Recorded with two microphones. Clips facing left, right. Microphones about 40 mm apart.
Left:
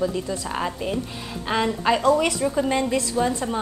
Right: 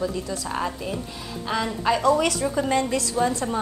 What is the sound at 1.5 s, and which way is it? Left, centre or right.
Speech, left.